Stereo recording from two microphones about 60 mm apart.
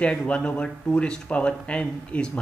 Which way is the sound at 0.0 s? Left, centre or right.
Centre.